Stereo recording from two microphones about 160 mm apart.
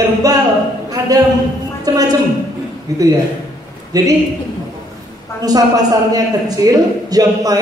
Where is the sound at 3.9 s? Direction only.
20° right (ahead or behind).